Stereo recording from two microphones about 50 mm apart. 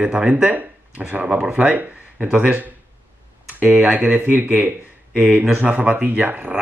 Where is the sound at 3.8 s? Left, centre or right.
Right.